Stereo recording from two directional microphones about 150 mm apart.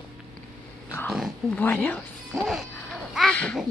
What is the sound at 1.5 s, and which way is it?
Speech, 10° left (ahead or behind).